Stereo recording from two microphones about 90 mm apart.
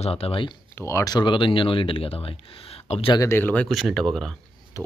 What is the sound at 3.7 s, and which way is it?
Speech, centre (ahead or behind).